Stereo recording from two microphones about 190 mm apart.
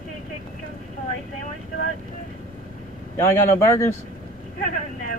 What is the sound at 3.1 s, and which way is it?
Speech, 15° left (ahead or behind).